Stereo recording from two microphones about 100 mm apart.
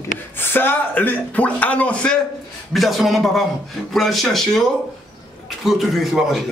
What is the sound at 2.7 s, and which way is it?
A man's voice, centre (ahead or behind).